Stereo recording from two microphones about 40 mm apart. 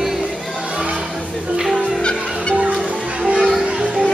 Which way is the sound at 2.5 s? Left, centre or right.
Right.